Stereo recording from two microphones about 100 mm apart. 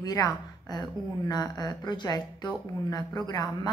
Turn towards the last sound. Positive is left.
turn(degrees=40)  # may be behind; listen again after turning